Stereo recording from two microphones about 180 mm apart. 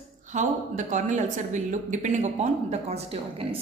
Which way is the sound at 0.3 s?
40° right (ahead or behind).